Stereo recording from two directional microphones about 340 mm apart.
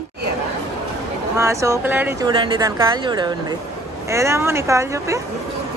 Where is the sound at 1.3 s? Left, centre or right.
Centre.